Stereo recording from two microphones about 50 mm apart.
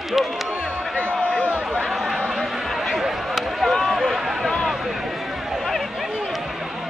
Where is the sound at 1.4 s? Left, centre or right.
Right.